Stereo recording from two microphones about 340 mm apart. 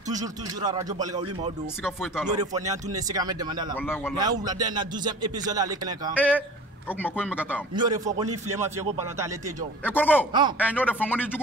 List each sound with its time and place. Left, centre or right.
0.1 s speech: centre
1.8 s speech: centre
3.7 s a man's voice: centre
4.2 s speech: centre
6.1 s speech: centre
7.7 s speech: centre
9.8 s speech: centre
10.3 s speech: centre
10.7 s speech: centre